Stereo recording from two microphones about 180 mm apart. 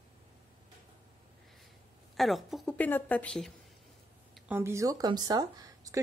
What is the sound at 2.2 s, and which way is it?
A woman's voice, centre (ahead or behind).